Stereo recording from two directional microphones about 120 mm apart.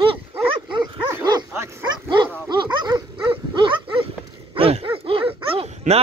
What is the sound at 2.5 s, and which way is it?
Dog, 40° right (ahead or behind).